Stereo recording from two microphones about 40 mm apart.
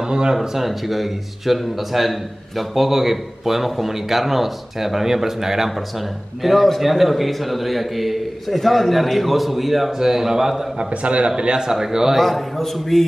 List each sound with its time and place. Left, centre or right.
0.0 s speech: centre
0.7 s a man's voice: centre
10.8 s a man's voice: right; by 12.2 s centre
12.2 s a man's voice: centre